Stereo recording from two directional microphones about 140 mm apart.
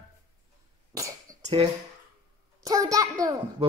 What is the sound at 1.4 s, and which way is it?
Speech, 45° right (ahead or behind).